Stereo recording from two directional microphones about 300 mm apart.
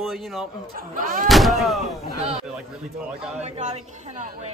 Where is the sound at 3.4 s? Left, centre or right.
Right.